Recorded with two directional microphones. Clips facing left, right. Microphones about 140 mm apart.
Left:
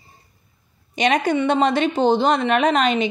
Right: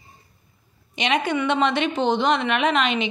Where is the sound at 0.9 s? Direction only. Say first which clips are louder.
Left 4 dB; 40° left (ahead or behind).